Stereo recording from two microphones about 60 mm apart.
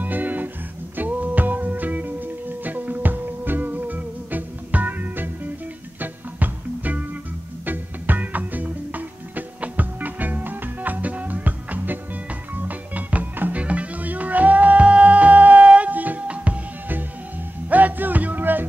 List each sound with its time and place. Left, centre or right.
0.0 s music: right
17.6 s music: right